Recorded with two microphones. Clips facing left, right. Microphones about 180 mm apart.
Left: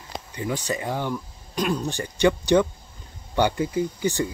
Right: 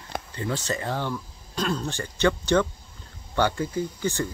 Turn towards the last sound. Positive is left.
turn(degrees=15)  # may be behind; listen again after turning